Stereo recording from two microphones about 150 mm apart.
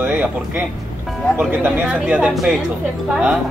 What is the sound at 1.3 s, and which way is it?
Speech, 10° right (ahead or behind).